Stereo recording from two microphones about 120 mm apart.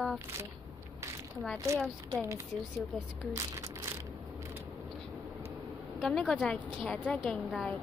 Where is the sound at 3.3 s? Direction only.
25° right (ahead or behind).